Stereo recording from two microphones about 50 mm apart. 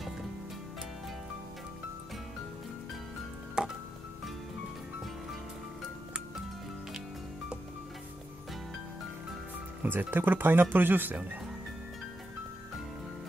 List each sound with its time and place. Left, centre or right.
3.6 s music: centre
9.8 s speech: right